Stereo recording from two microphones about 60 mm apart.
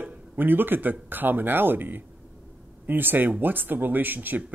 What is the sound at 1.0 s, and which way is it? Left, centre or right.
Speech, right.